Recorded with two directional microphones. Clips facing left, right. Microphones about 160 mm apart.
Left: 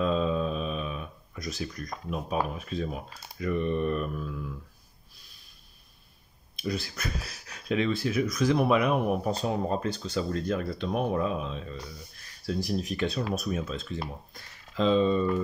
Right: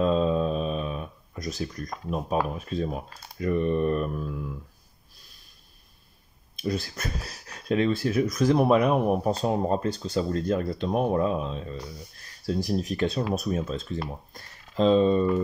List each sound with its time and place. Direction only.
0.0 s speech: 40° right (ahead or behind)
6.6 s speech: 45° right (ahead or behind)